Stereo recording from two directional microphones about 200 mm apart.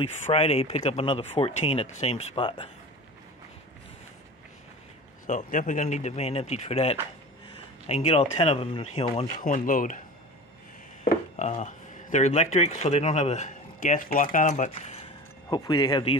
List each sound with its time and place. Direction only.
0.0 s speech: 30° left (ahead or behind)
5.2 s speech: 40° left (ahead or behind)
9.4 s speech: 40° left (ahead or behind)
11.3 s speech: 35° left (ahead or behind)
15.5 s speech: 20° left (ahead or behind)